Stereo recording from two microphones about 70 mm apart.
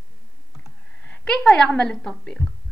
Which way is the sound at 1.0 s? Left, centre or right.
Centre.